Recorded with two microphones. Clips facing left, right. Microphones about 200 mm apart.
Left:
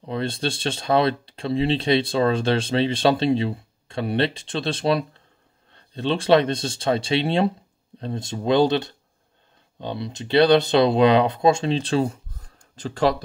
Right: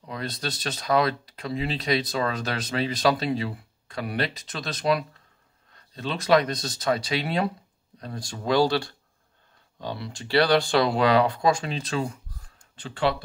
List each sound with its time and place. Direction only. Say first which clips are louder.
0.0 s speech: left 7 dB; 30° left (ahead or behind)